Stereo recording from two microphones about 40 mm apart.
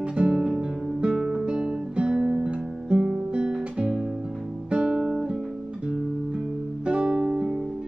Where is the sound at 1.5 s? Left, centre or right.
Right.